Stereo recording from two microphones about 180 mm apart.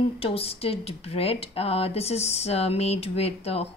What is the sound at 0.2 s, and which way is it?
A woman's voice, 30° left (ahead or behind).